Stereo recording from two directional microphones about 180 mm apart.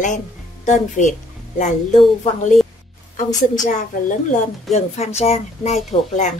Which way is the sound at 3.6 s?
40° left (ahead or behind).